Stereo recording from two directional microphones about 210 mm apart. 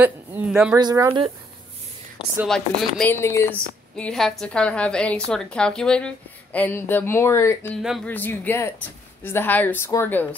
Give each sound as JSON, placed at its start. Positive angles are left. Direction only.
{"t": 0.0, "sound": "a woman's voice", "side_deg": -10}
{"t": 0.7, "sound": "speech", "side_deg": -15}
{"t": 2.2, "sound": "speech", "side_deg": 25}
{"t": 3.0, "sound": "a woman's voice", "side_deg": 10}
{"t": 7.8, "sound": "a woman's voice", "side_deg": 0}
{"t": 8.1, "sound": "speech", "side_deg": 10}